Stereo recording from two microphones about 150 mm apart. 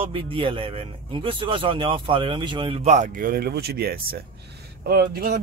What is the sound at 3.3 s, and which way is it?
A man's voice, 90° right.